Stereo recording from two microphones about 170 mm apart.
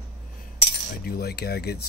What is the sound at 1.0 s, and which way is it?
Speech, 65° left (ahead or behind).